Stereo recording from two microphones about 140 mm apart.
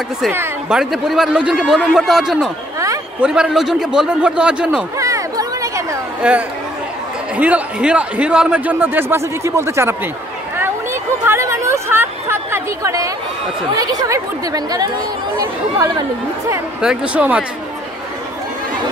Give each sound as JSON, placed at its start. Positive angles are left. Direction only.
{"t": 0.7, "sound": "a man's voice", "side_deg": -5}
{"t": 4.9, "sound": "chatter", "side_deg": -25}
{"t": 6.2, "sound": "speech", "side_deg": -10}
{"t": 10.6, "sound": "a sound", "side_deg": -15}
{"t": 13.7, "sound": "speech", "side_deg": -25}
{"t": 16.8, "sound": "speech", "side_deg": -10}